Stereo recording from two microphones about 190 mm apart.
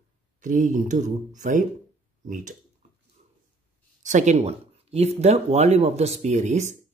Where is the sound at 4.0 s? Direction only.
40° right (ahead or behind).